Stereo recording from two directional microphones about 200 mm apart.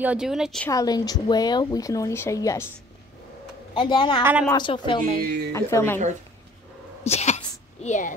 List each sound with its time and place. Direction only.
0.0 s speech: 5° right (ahead or behind)
0.7 s speech: 20° left (ahead or behind)
3.7 s a woman's voice: 25° left (ahead or behind)
4.2 s speech: 10° right (ahead or behind)
4.5 s a woman's voice: 20° left (ahead or behind)
5.2 s speech: 55° right (ahead or behind)
5.5 s speech: 15° left (ahead or behind)
7.1 s sneeze: 35° left (ahead or behind)